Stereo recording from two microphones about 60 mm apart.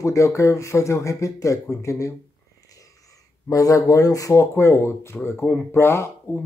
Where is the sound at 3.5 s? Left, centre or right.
Left.